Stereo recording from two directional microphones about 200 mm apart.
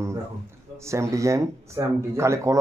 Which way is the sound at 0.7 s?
15° right (ahead or behind).